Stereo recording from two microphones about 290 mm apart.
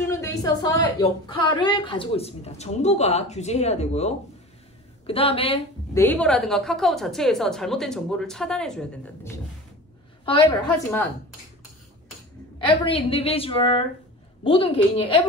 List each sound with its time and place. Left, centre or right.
0.0 s a sound: centre
1.2 s a woman's voice: centre
6.0 s a woman's voice: centre
10.2 s a woman's voice: centre
12.6 s a woman's voice: centre